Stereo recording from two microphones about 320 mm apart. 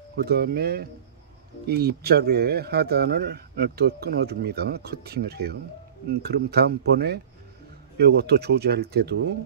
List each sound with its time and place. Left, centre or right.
0.1 s a man's voice: right